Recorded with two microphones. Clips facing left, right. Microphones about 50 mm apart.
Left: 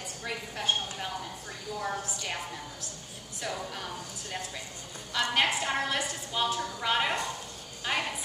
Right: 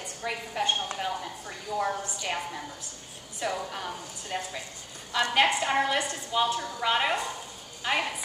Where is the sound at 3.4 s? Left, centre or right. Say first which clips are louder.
Right 4 dB; centre.